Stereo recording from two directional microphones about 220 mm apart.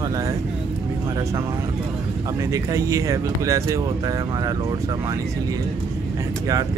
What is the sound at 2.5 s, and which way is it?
Speech, 15° right (ahead or behind).